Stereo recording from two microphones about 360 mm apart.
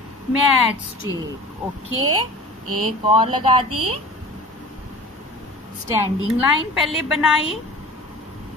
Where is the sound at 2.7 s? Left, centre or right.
Right.